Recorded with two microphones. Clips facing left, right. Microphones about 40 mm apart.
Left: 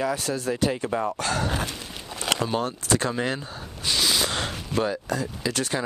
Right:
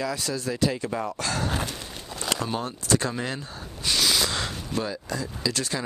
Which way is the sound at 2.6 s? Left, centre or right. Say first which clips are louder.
Left 1 dB; left.